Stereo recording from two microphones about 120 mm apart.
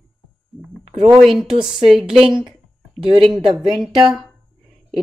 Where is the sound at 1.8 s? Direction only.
5° right (ahead or behind).